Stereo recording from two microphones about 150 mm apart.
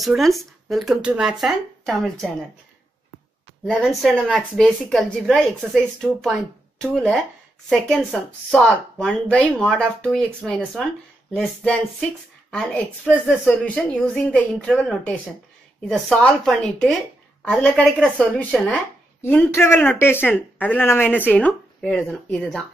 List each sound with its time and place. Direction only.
0.0 s speech: centre (ahead or behind)
3.7 s speech: centre (ahead or behind)